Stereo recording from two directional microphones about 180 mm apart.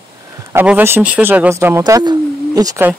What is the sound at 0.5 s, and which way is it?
Speech, 10° right (ahead or behind).